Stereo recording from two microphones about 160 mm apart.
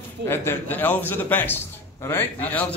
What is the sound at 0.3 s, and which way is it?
A man's voice, 15° left (ahead or behind).